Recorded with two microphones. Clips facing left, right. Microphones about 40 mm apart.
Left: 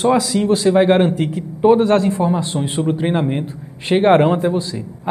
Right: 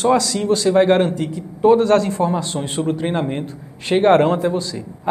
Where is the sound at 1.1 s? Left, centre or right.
Left.